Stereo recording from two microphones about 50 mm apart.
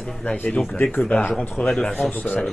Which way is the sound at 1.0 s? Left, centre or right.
Left.